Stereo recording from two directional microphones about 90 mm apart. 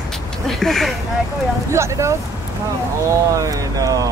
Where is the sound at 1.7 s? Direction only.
30° right (ahead or behind).